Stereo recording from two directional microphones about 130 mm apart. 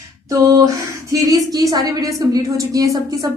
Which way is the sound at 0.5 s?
25° right (ahead or behind).